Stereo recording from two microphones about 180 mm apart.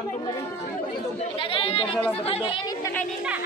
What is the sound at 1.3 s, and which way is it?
Chatter, 30° left (ahead or behind).